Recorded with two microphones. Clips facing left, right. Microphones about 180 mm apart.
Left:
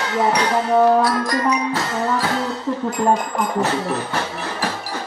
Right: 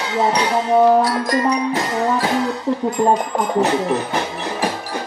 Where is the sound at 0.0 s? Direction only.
15° right (ahead or behind).